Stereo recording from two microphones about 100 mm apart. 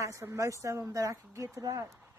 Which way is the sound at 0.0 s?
30° right (ahead or behind).